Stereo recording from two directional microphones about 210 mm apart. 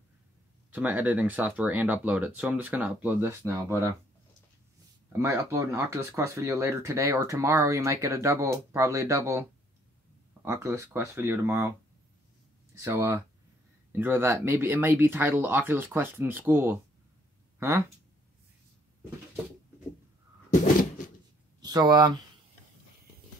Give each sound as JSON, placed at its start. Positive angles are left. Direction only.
{"t": 0.7, "sound": "speech", "side_deg": -10}
{"t": 5.2, "sound": "speech", "side_deg": -10}
{"t": 12.7, "sound": "speech", "side_deg": -15}
{"t": 21.5, "sound": "speech", "side_deg": -20}